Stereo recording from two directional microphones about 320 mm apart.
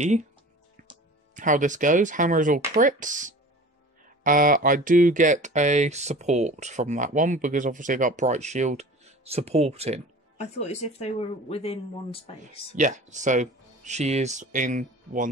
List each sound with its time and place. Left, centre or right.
0.8 s speech: right
10.6 s speech: left
12.7 s speech: right